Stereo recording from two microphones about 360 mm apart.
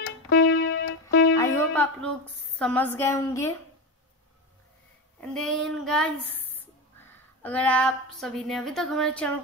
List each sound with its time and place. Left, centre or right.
0.3 s music: left
1.3 s music: centre
2.6 s a woman's voice: centre
5.3 s child singing: centre
6.6 s a woman's voice: centre